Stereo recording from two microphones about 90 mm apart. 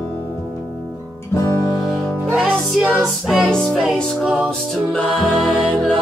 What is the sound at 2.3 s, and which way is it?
Music, 15° right (ahead or behind).